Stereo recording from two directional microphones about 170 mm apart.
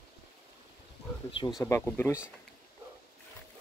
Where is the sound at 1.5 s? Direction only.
15° left (ahead or behind).